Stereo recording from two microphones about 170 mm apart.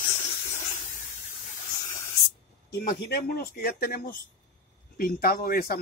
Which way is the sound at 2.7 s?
60° left (ahead or behind).